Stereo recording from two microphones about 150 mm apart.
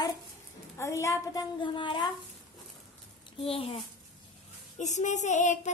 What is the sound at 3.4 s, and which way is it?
Speech, 40° left (ahead or behind).